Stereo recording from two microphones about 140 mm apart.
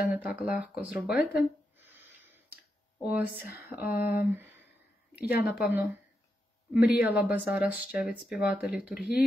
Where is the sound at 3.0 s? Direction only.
10° right (ahead or behind).